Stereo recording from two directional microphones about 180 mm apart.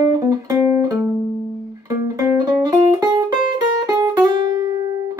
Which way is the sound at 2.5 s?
20° right (ahead or behind).